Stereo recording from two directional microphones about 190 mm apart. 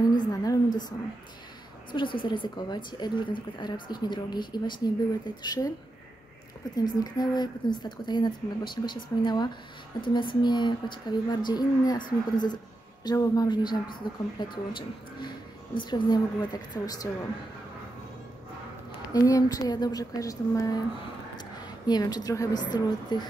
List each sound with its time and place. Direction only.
0.2 s a woman's voice: 20° left (ahead or behind)
2.1 s a woman's voice: 25° left (ahead or behind)
6.8 s a woman's voice: 20° left (ahead or behind)
18.9 s a woman's voice: 20° left (ahead or behind)